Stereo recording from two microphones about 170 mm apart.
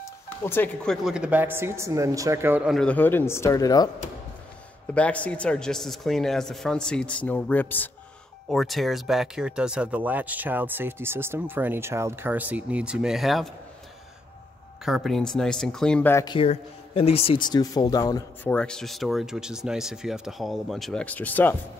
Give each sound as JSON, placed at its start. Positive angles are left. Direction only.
{"t": 0.0, "sound": "music", "side_deg": 15}
{"t": 1.0, "sound": "speech", "side_deg": -5}
{"t": 2.7, "sound": "a man's voice", "side_deg": 5}
{"t": 4.9, "sound": "speech", "side_deg": 10}
{"t": 14.9, "sound": "speech", "side_deg": 0}
{"t": 16.3, "sound": "speech", "side_deg": 30}
{"t": 18.4, "sound": "speech", "side_deg": 5}